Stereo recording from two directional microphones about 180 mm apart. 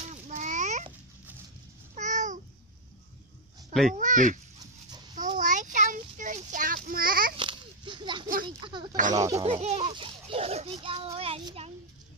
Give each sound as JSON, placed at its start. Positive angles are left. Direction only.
{"t": 0.1, "sound": "a sound", "side_deg": -40}
{"t": 2.0, "sound": "babbling", "side_deg": -45}
{"t": 3.9, "sound": "speech", "side_deg": -45}
{"t": 5.4, "sound": "child singing", "side_deg": -45}
{"t": 7.3, "sound": "children playing", "side_deg": -25}
{"t": 8.5, "sound": "a sound", "side_deg": -25}
{"t": 9.1, "sound": "speech", "side_deg": -20}
{"t": 9.5, "sound": "children playing", "side_deg": -35}
{"t": 11.1, "sound": "child singing", "side_deg": -30}